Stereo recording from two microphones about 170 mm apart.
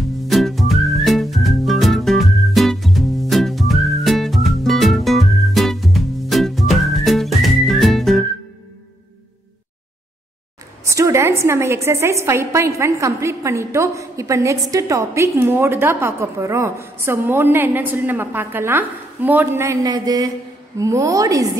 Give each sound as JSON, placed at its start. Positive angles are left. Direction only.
{"t": 0.3, "sound": "whistling", "side_deg": 0}
{"t": 10.9, "sound": "a woman's voice", "side_deg": -15}